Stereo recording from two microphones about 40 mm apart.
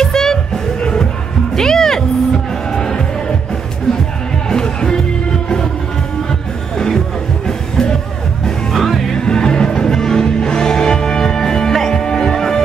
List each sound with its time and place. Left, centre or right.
0.0 s music: centre
1.6 s music: centre
4.5 s music: centre
8.7 s music: centre